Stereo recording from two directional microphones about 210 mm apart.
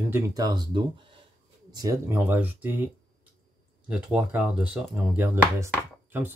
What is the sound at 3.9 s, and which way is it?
Speech, 5° right (ahead or behind).